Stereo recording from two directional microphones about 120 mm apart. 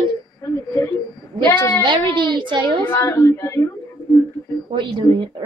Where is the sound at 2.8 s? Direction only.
20° left (ahead or behind).